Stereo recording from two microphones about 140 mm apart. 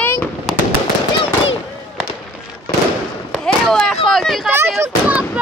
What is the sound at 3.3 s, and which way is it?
Chop, 5° left (ahead or behind).